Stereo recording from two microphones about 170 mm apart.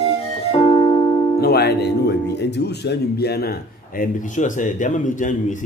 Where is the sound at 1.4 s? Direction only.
70° left (ahead or behind).